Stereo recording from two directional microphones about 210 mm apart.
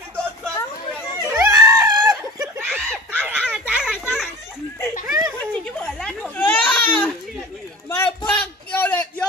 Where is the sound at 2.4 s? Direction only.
5° right (ahead or behind).